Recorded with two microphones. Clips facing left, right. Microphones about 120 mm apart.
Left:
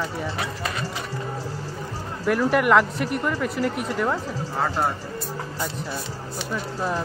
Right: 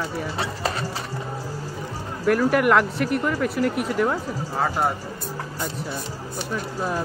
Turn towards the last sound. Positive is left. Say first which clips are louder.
# even
turn(degrees=-5)  # may be behind; listen again after turning